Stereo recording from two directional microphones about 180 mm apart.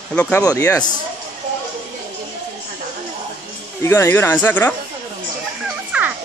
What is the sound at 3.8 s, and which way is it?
Speech, 15° left (ahead or behind).